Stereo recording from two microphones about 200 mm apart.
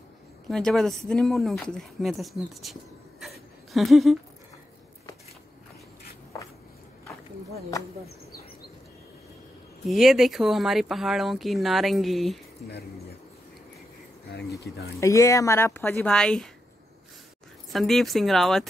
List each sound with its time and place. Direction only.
0.5 s speech: centre (ahead or behind)
9.8 s speech: centre (ahead or behind)
14.3 s speech: 55° left (ahead or behind)
15.0 s speech: 15° left (ahead or behind)
17.6 s speech: centre (ahead or behind)